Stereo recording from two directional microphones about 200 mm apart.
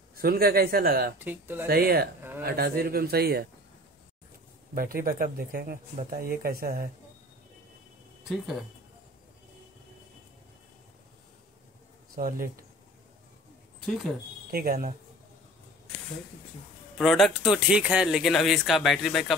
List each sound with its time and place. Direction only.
0.2 s a man's voice: 50° right (ahead or behind)
1.2 s speech: 10° right (ahead or behind)
1.7 s a man's voice: 50° right (ahead or behind)
4.7 s a man's voice: 45° right (ahead or behind)
12.2 s a man's voice: 45° right (ahead or behind)
14.5 s a man's voice: 45° right (ahead or behind)
17.0 s speech: centre (ahead or behind)